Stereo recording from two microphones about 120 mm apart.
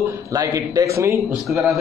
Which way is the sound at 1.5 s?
Centre (ahead or behind).